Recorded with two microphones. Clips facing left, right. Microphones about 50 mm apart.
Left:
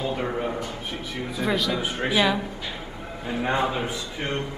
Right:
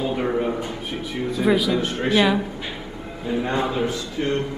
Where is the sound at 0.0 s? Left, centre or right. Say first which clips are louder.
Right 4 dB; centre.